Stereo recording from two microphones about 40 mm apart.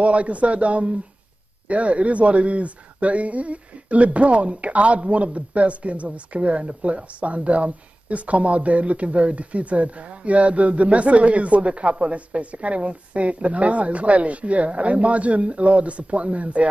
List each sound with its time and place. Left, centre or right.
0.0 s speech: right